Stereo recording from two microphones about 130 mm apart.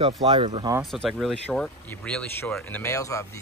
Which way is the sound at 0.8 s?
Centre (ahead or behind).